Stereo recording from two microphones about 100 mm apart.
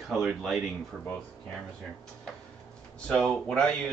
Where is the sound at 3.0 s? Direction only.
5° left (ahead or behind).